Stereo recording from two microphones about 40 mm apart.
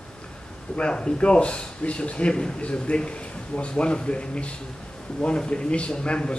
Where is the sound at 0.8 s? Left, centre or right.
Left.